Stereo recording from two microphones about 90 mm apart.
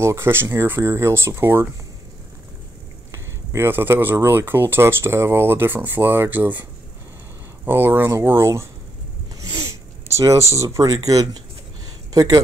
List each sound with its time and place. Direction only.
0.0 s speech: 30° right (ahead or behind)
3.1 s speech: 25° right (ahead or behind)
7.6 s speech: 25° right (ahead or behind)
9.4 s sniff: 35° right (ahead or behind)
10.5 s speech: 35° right (ahead or behind)